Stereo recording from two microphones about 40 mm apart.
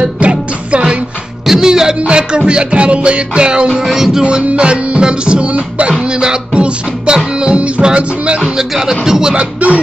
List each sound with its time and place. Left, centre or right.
0.0 s music: right
1.5 s music: centre
2.0 s music: right
3.8 s speech: centre
4.2 s music: right
8.5 s speech: centre
9.3 s speech: right